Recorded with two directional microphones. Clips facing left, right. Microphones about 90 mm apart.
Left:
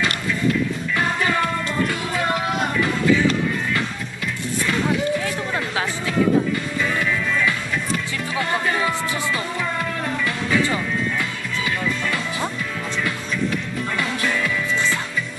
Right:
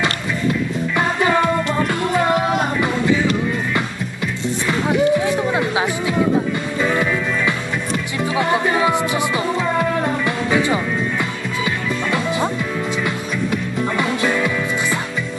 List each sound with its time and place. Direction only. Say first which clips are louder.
0.9 s music: right 4 dB; 25° right (ahead or behind)
4.6 s music: right 5 dB; 20° right (ahead or behind)
13.9 s music: right 4 dB; 25° right (ahead or behind)